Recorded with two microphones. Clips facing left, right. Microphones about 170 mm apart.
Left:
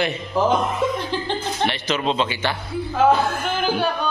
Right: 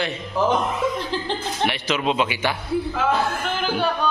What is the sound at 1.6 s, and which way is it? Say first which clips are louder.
Speech: even; 5° right (ahead or behind).